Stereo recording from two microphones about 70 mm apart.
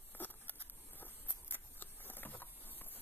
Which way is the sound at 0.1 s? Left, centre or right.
Left.